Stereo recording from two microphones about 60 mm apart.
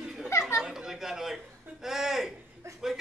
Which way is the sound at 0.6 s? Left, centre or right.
Centre.